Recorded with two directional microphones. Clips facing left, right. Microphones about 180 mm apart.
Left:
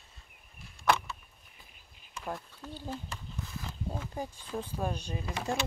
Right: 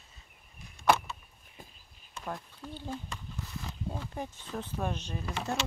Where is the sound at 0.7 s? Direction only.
20° right (ahead or behind).